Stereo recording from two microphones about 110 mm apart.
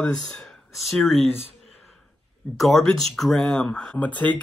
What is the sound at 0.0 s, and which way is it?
Speech, 5° left (ahead or behind).